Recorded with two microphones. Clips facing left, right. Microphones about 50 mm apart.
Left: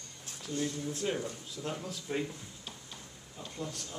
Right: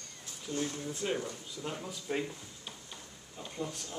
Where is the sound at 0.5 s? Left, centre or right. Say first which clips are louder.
Left 1 dB; right.